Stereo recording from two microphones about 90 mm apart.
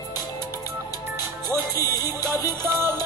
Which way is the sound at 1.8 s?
45° left (ahead or behind).